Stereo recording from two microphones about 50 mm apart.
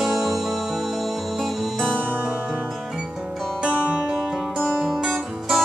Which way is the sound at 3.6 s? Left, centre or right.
Right.